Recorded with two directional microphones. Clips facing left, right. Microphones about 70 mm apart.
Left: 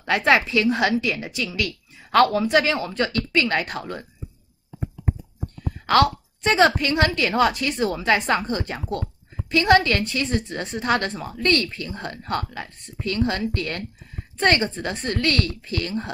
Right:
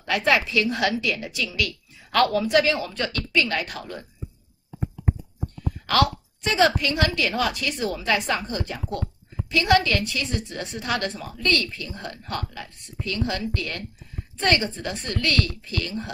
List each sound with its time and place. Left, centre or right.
0.0 s a woman's voice: left
5.9 s a woman's voice: left